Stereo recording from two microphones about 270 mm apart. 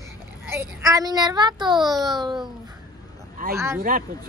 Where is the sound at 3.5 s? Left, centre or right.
Centre.